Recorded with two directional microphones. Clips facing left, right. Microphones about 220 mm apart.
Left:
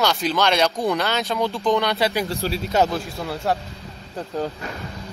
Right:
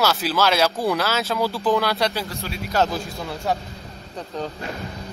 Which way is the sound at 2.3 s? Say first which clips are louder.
Left 7 dB; 35° left (ahead or behind).